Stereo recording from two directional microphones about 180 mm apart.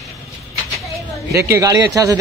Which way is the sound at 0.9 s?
15° right (ahead or behind).